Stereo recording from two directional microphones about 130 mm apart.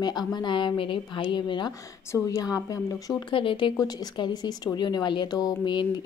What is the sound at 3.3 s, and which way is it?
Speech, 40° left (ahead or behind).